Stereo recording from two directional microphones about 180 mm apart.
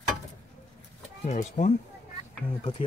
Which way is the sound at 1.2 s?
40° left (ahead or behind).